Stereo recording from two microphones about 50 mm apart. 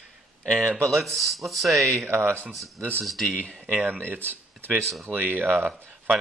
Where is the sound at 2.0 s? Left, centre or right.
Right.